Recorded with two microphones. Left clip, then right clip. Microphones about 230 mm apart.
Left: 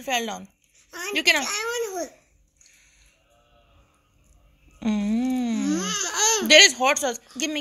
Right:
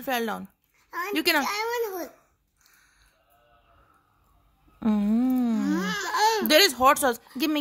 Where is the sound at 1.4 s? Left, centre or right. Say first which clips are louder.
Even; centre.